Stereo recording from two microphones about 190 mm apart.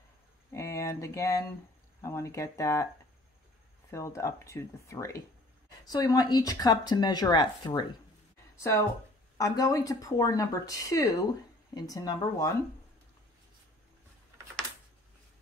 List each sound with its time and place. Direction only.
0.5 s speech: 15° left (ahead or behind)
3.9 s speech: 15° left (ahead or behind)
9.4 s speech: 20° left (ahead or behind)